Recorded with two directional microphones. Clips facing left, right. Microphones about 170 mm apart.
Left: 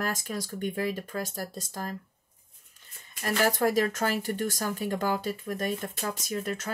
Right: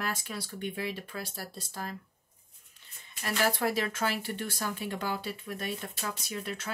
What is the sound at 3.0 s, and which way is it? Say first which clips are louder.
Speech: left 3 dB; 45° left (ahead or behind).